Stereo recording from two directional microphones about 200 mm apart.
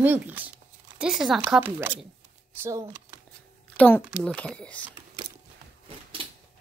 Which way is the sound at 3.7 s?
10° left (ahead or behind).